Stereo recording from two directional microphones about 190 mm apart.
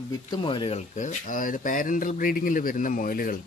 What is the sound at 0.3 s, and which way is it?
Speech, 25° left (ahead or behind).